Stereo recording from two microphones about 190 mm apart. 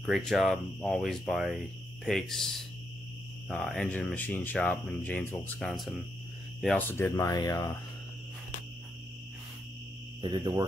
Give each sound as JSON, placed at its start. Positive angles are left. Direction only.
{"t": 0.0, "sound": "speech", "side_deg": 0}
{"t": 10.2, "sound": "speech", "side_deg": -25}